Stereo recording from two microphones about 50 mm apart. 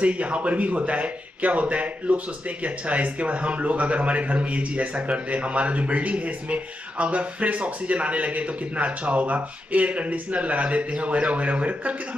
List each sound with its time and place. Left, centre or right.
0.0 s a man's voice: right